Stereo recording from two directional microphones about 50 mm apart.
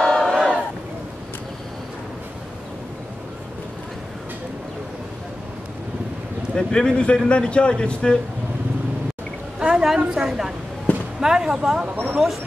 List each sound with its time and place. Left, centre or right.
0.0 s battle cry: centre
6.5 s a man's voice: centre
9.6 s a woman's voice: centre